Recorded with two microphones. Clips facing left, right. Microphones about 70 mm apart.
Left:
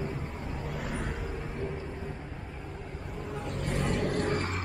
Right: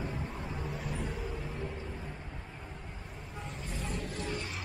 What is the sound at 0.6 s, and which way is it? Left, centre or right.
Vehicle, left.